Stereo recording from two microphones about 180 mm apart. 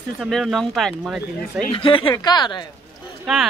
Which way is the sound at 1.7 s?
30° left (ahead or behind).